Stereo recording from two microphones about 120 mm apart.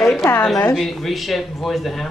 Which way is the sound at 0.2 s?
20° left (ahead or behind).